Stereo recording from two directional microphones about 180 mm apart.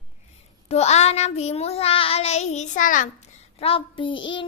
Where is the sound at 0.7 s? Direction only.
35° left (ahead or behind).